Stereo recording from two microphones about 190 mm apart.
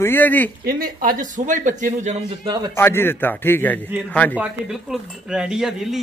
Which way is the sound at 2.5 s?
20° right (ahead or behind).